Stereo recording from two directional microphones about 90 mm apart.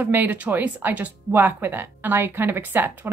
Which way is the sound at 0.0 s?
20° right (ahead or behind).